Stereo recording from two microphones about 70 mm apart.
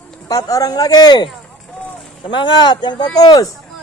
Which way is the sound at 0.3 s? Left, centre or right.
Left.